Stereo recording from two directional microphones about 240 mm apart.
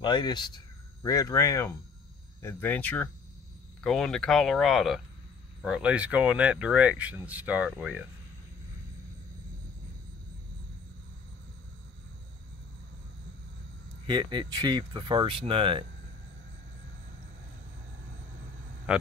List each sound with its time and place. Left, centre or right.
0.0 s speech: centre
14.0 s speech: centre
18.9 s speech: centre